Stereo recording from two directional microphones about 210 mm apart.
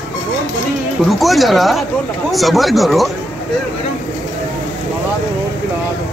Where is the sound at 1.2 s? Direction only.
Centre (ahead or behind).